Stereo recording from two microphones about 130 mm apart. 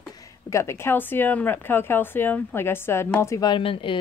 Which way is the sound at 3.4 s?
40° left (ahead or behind).